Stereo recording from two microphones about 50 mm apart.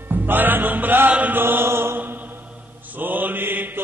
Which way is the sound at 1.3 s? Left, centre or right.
Right.